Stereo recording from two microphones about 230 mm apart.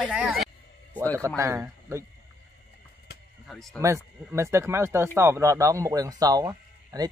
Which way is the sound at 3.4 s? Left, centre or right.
Centre.